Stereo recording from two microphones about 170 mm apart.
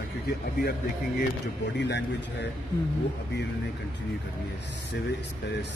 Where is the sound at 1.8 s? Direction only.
90° left.